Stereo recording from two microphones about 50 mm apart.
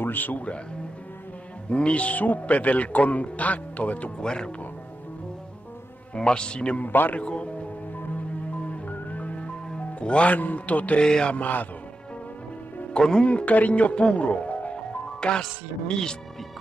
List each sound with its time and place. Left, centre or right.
0.0 s speech: left
1.7 s speech: left
4.2 s music: centre
6.1 s speech: centre
6.8 s a man's voice: left
7.2 s speech: left
8.6 s music: left
9.7 s speech: left
11.0 s music: centre
11.3 s a man's voice: left
12.9 s a man's voice: centre